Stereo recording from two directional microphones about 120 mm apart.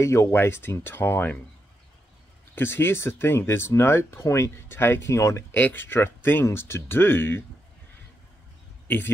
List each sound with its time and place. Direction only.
0.0 s speech: 25° left (ahead or behind)
2.5 s speech: 20° left (ahead or behind)
8.8 s a man's voice: 15° left (ahead or behind)